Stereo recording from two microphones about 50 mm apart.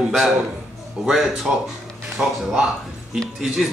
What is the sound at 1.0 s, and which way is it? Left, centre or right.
Speech, centre.